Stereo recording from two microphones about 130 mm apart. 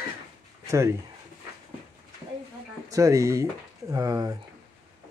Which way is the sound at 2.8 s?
25° right (ahead or behind).